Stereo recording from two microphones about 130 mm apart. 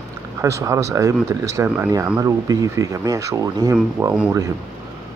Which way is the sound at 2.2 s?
25° right (ahead or behind).